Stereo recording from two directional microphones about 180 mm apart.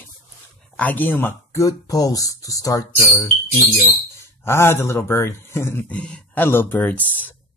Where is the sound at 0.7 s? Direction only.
10° left (ahead or behind).